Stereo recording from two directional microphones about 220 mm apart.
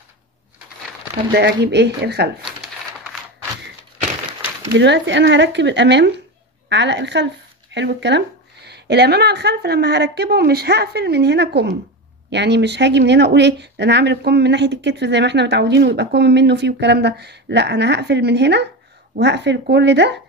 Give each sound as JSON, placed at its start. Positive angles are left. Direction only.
{"t": 1.3, "sound": "speech", "side_deg": -50}
{"t": 4.7, "sound": "speech", "side_deg": -55}